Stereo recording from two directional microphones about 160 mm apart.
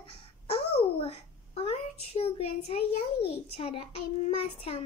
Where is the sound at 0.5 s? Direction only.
40° left (ahead or behind).